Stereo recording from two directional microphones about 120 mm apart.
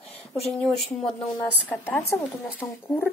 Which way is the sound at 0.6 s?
Centre (ahead or behind).